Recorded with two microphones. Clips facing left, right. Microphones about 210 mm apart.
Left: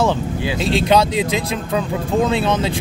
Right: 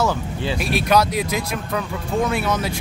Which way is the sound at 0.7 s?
25° left (ahead or behind).